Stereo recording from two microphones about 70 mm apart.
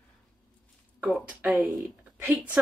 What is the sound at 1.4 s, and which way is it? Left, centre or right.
Speech, centre.